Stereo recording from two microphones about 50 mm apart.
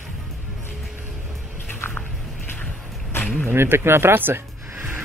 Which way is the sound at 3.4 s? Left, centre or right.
Right.